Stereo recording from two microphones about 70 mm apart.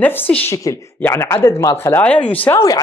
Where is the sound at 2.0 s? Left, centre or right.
Left.